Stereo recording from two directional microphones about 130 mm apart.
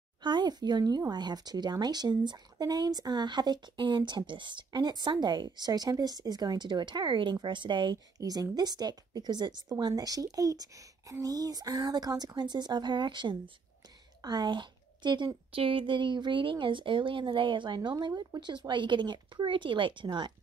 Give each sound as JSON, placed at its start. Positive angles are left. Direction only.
{"t": 0.2, "sound": "a woman's voice", "side_deg": -35}